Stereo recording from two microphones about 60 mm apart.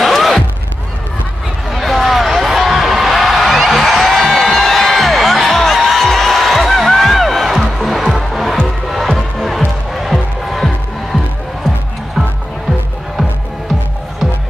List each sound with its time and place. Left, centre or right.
0.0 s music: centre
1.7 s a sound: centre
4.2 s music: centre
12.2 s music: centre